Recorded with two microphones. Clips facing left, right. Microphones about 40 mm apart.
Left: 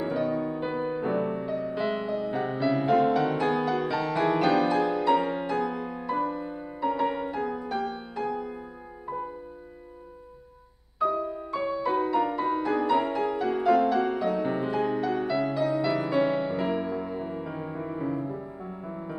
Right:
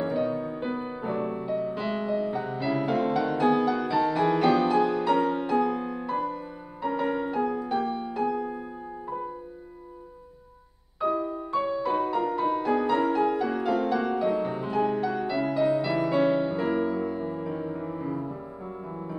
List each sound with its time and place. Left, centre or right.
0.0 s music: centre
1.4 s music: centre
1.8 s music: centre
2.3 s music: left
2.9 s music: centre
11.0 s music: centre
11.5 s music: centre
14.4 s music: centre
14.7 s music: centre
15.2 s music: centre
17.0 s music: centre